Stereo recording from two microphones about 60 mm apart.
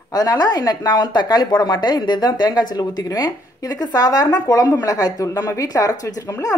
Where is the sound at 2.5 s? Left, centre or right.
Left.